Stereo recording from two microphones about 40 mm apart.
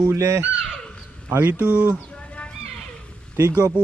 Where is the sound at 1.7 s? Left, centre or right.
Right.